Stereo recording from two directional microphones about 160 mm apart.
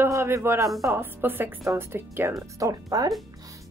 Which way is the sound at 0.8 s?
15° right (ahead or behind).